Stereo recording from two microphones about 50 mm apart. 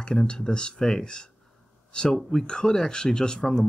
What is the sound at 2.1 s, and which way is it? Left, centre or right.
Speech, centre.